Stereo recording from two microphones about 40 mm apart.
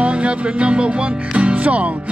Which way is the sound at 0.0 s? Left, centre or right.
Right.